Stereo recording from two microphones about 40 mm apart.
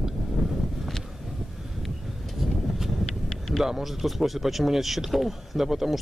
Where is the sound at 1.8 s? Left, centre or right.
Centre.